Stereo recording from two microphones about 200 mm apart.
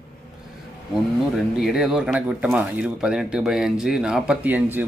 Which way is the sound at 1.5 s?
Centre (ahead or behind).